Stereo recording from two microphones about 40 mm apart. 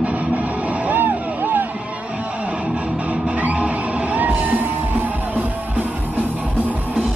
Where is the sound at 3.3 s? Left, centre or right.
Right.